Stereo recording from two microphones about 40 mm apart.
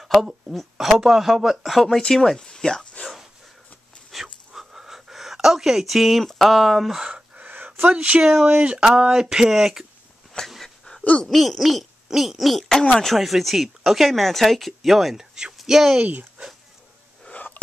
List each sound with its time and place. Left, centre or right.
0.0 s a sound: centre
0.6 s speech: centre
1.9 s speech: centre
4.1 s dog: centre
4.5 s a sound: centre
6.2 s speech: centre
7.3 s a sound: right
7.9 s speech: right
8.3 s speech: centre
8.8 s speech: right
10.6 s a sound: centre
11.2 s speech: centre